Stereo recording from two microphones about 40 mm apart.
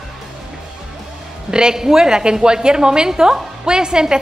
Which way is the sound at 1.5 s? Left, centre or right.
Centre.